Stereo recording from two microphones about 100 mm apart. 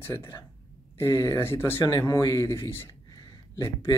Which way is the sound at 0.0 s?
25° left (ahead or behind).